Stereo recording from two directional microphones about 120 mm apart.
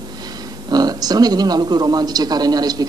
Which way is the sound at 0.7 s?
35° right (ahead or behind).